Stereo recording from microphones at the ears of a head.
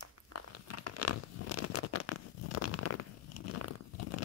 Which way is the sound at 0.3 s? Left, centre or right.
Left.